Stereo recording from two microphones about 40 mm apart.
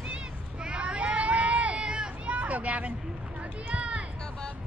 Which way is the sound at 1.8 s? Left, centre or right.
Right.